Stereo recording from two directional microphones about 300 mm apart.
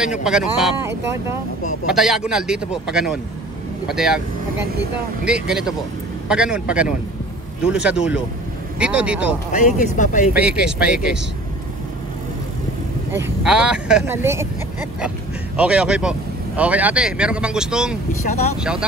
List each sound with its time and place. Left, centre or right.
0.2 s speech: centre
9.5 s speech: left
10.3 s speech: centre
13.1 s speech: centre
15.5 s speech: centre